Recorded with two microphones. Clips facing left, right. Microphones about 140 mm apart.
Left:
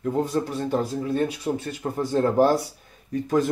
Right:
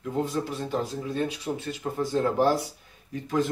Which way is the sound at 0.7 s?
45° left (ahead or behind).